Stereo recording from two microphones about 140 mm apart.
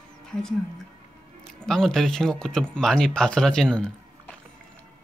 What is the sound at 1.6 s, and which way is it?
Speech, 5° left (ahead or behind).